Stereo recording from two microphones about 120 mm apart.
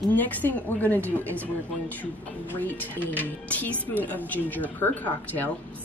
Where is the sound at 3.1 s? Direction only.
15° left (ahead or behind).